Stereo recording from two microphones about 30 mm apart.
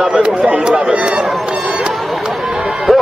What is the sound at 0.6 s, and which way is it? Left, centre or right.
Speech, right.